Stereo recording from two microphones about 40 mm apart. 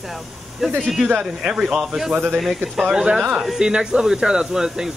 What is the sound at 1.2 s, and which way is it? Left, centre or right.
Speech, centre.